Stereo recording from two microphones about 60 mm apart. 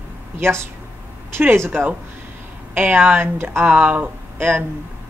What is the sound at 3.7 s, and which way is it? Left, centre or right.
Speech, right.